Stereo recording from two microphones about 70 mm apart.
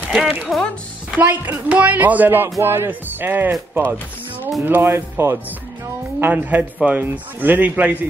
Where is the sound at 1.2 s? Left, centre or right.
Right.